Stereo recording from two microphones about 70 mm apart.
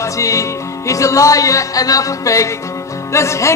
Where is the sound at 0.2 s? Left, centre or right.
Left.